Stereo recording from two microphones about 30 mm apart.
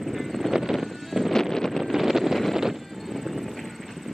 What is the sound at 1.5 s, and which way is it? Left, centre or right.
Wind noise, centre.